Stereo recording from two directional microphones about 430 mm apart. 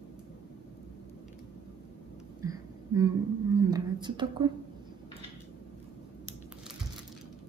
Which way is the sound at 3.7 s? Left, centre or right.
Centre.